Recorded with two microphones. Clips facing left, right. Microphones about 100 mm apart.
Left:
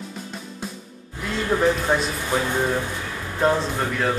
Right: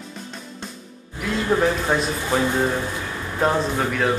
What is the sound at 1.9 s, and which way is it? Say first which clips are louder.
A man's voice: right 1 dB; centre (ahead or behind).